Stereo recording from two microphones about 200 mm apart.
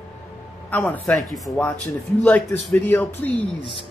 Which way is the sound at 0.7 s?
10° left (ahead or behind).